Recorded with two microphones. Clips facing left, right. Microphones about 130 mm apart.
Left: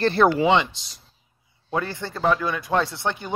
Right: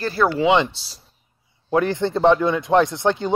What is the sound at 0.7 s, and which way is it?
Speech, 30° right (ahead or behind).